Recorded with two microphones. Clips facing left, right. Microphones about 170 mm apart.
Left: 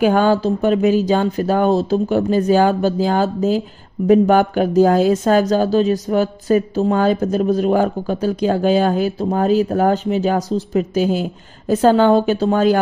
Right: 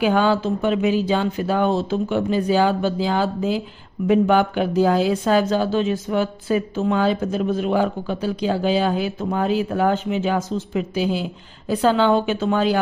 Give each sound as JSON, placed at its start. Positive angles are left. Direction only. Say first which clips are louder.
{"t": 0.0, "sound": "a woman's voice", "louder": "left 4 dB", "side_deg": 45}